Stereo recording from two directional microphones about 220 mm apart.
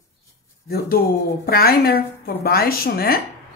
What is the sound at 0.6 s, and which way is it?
Speech, 45° left (ahead or behind).